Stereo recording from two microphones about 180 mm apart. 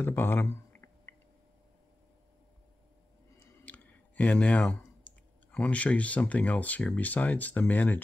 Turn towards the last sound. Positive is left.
turn(degrees=10)  # may be behind; listen again after turning